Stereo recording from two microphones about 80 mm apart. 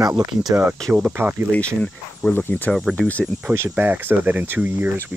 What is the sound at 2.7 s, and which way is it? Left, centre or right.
Speech, centre.